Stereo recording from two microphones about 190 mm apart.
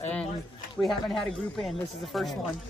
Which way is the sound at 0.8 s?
Centre (ahead or behind).